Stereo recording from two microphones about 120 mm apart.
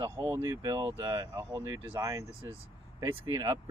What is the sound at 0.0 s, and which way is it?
Speech, 20° right (ahead or behind).